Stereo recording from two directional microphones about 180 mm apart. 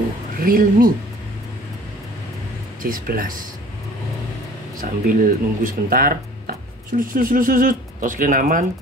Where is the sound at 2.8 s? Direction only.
50° right (ahead or behind).